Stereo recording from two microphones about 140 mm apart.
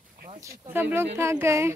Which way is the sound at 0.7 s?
15° right (ahead or behind).